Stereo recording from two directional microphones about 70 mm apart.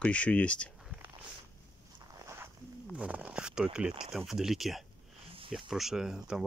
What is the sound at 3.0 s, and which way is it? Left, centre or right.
Speech, centre.